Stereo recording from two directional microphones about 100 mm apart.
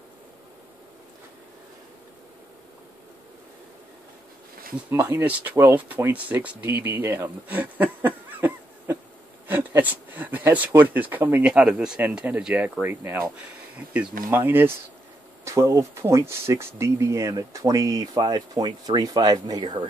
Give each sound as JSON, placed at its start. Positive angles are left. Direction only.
{"t": 4.8, "sound": "speech", "side_deg": -25}
{"t": 12.0, "sound": "speech", "side_deg": -15}